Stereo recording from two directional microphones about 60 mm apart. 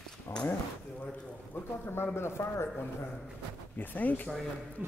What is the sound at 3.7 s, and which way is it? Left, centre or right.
Speech, left.